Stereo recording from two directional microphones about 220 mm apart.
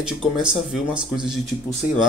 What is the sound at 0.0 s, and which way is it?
Speech, 5° right (ahead or behind).